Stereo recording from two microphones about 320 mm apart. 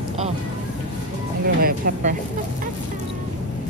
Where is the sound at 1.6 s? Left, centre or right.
Right.